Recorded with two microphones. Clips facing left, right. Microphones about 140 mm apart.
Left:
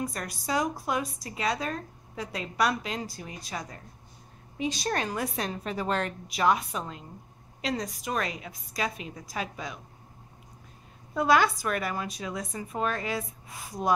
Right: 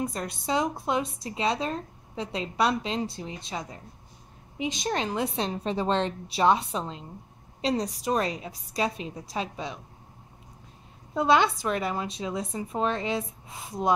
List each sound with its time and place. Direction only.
0.0 s a woman's voice: 25° right (ahead or behind)
11.1 s speech: 25° right (ahead or behind)